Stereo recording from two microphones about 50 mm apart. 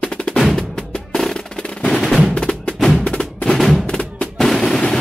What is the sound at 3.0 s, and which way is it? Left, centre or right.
Percussion, left.